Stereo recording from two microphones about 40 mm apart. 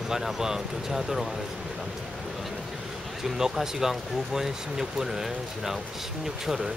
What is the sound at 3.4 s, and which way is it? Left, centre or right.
Speech, centre.